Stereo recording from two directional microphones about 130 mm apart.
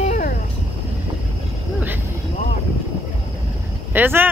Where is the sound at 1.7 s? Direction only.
15° right (ahead or behind).